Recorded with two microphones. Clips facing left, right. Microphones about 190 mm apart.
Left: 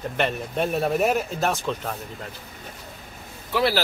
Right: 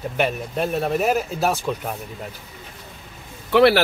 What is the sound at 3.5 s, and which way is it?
Speech, 65° right (ahead or behind).